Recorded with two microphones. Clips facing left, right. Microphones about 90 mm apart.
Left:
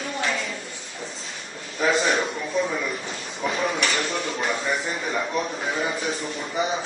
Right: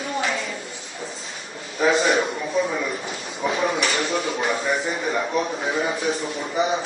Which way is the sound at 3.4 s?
5° right (ahead or behind).